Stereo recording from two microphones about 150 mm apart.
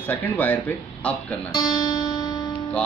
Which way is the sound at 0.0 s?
10° left (ahead or behind).